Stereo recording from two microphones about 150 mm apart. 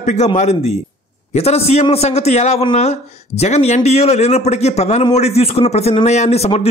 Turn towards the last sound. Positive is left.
turn(degrees=45)  # may be behind; listen again after turning